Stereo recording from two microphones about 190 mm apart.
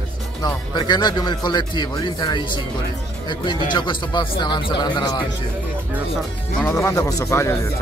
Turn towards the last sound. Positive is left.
turn(degrees=15)  # may be behind; listen again after turning